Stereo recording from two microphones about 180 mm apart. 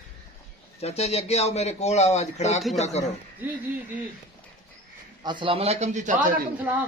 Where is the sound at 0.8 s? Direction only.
35° left (ahead or behind).